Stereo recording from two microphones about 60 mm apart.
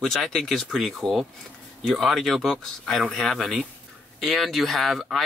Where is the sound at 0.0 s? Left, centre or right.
Centre.